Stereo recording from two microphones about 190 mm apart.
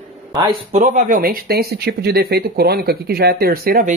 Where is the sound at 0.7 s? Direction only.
40° right (ahead or behind).